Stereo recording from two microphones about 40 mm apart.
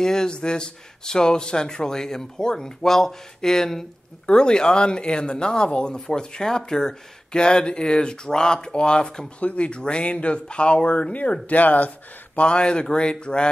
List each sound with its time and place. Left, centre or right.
0.0 s speech: centre
9.4 s speech: left
12.4 s speech: left